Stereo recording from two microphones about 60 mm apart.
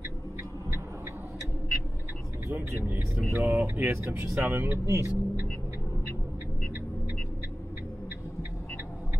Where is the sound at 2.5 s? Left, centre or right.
Right.